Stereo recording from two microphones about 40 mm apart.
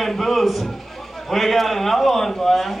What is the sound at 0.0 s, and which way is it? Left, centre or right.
A man's voice, centre.